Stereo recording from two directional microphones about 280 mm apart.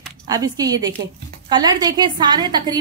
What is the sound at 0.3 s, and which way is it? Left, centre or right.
A woman's voice, centre.